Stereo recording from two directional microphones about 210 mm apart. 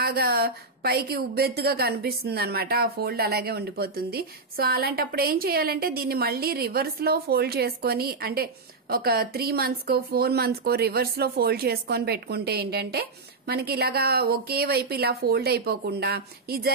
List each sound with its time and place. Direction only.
0.0 s a woman's voice: 45° right (ahead or behind)